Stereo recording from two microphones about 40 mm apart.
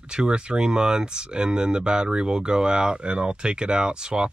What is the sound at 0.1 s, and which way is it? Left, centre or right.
Speech, right.